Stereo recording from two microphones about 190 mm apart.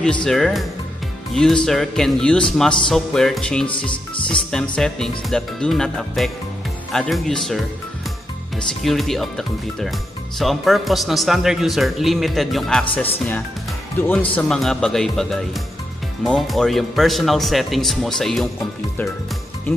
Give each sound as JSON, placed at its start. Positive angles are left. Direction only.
{"t": 0.2, "sound": "speech", "side_deg": 0}
{"t": 3.9, "sound": "speech", "side_deg": 25}
{"t": 4.3, "sound": "speech", "side_deg": 5}
{"t": 8.8, "sound": "speech", "side_deg": 0}